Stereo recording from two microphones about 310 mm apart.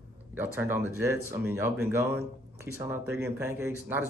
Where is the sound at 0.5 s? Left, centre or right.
Centre.